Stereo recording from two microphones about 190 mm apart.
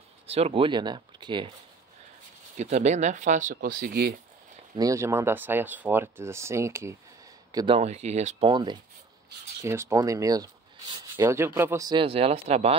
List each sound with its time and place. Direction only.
0.3 s speech: 30° right (ahead or behind)
2.5 s speech: 40° right (ahead or behind); by 4.1 s 55° right (ahead or behind)
4.7 s speech: 15° right (ahead or behind)
7.5 s speech: 30° right (ahead or behind)
8.5 s speech: 25° right (ahead or behind)